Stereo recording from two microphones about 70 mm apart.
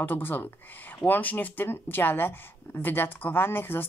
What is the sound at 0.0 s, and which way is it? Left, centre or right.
Speech, left.